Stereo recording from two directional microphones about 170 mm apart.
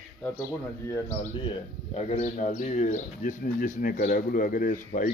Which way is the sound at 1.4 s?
35° left (ahead or behind).